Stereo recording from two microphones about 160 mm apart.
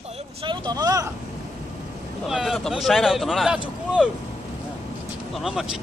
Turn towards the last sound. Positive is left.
turn(degrees=0)  # may be behind; listen again after turning